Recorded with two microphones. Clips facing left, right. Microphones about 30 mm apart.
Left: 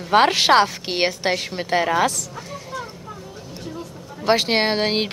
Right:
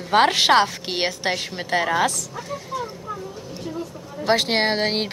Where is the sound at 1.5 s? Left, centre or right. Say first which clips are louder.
Left 2 dB; centre.